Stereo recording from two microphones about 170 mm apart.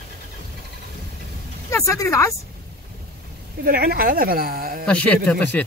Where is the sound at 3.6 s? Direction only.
65° right (ahead or behind).